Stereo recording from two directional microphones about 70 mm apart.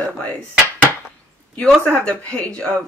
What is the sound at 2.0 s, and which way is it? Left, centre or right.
Speech, centre.